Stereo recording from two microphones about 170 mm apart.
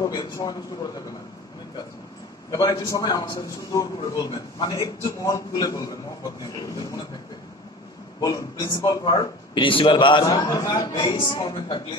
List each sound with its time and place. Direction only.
0.1 s a man's voice: 20° left (ahead or behind)
2.5 s a man's voice: 25° left (ahead or behind)
8.2 s a man's voice: 20° left (ahead or behind)